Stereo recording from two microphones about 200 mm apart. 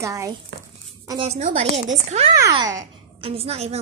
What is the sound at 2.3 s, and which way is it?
Speech, 20° right (ahead or behind).